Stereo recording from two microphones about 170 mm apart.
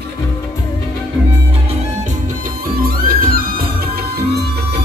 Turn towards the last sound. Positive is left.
turn(degrees=-60)  # may be behind; listen again after turning